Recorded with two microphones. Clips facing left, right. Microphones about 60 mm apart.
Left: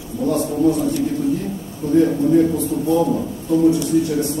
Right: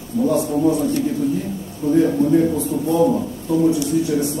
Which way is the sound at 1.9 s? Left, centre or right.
Centre.